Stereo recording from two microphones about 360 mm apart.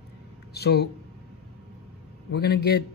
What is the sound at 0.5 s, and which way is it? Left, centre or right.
Speech, left.